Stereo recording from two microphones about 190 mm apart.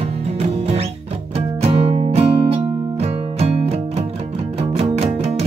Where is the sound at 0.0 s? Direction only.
35° right (ahead or behind).